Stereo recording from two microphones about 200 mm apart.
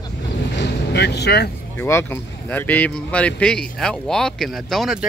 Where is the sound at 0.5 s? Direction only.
55° left (ahead or behind).